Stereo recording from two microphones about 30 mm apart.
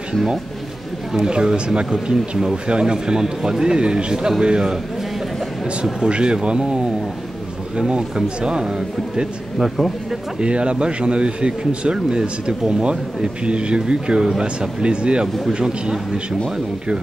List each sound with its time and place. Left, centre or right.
1.2 s a man's voice: right
5.9 s speech: right
8.4 s a man's voice: right
9.6 s speech: centre
10.4 s speech: right